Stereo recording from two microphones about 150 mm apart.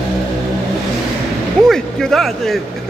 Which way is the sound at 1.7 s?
Centre (ahead or behind).